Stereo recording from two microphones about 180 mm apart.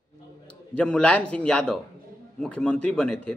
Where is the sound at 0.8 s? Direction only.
5° left (ahead or behind).